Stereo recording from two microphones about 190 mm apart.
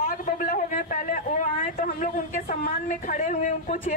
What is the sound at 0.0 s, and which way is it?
A woman's voice, 40° left (ahead or behind).